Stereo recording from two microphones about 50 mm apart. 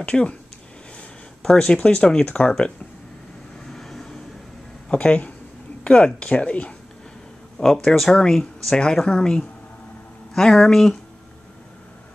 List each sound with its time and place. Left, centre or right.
0.0 s speech: left
1.4 s speech: centre
1.8 s speech: left
3.6 s vehicle: centre
4.8 s speech: left
7.6 s speech: centre
9.0 s speech: centre
10.3 s speech: centre